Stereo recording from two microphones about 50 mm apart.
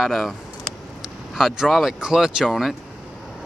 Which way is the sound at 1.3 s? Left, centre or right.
Centre.